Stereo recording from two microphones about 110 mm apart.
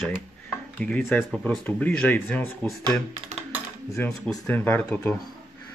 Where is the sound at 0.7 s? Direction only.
10° left (ahead or behind).